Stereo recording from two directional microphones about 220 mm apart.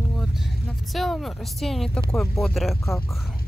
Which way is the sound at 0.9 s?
Centre (ahead or behind).